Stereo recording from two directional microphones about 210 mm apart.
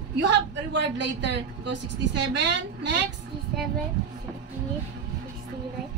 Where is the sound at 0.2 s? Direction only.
60° right (ahead or behind).